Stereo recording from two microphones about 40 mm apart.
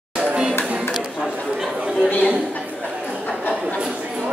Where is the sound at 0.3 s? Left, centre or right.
Right.